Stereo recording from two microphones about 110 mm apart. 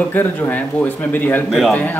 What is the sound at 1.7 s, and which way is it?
Speech, 15° left (ahead or behind).